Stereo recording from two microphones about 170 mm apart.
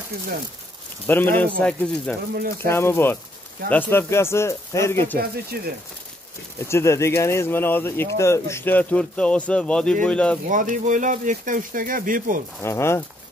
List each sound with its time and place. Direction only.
1.0 s speech: 10° left (ahead or behind)
5.5 s speech: 65° right (ahead or behind)
6.7 s speech: 15° left (ahead or behind)
10.5 s speech: 50° right (ahead or behind)
12.6 s speech: 15° left (ahead or behind)